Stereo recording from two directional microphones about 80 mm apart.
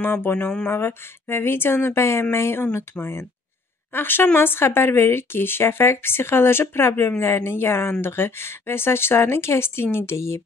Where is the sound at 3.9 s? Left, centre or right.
Left.